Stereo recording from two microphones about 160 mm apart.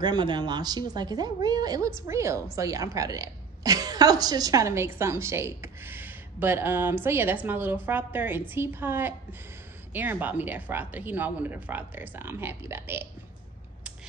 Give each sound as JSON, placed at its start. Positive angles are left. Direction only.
{"t": 0.0, "sound": "a woman's voice", "side_deg": -30}